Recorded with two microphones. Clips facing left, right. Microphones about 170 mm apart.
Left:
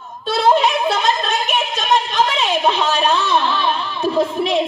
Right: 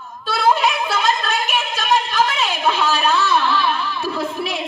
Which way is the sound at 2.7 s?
20° left (ahead or behind).